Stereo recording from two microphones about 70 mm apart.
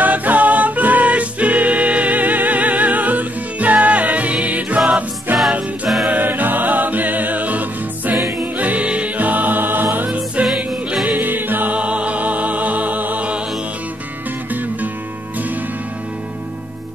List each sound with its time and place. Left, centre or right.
0.0 s music: right
10.4 s music: centre
11.1 s music: right